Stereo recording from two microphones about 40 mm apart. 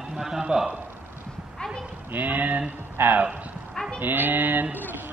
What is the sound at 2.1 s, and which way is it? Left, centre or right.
Speech, right.